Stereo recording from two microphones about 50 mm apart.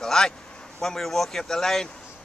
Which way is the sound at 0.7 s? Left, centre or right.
Centre.